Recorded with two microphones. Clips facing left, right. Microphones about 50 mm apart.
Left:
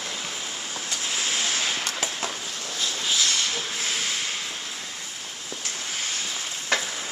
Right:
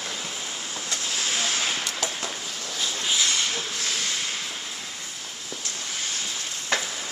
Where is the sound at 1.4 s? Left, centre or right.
Centre.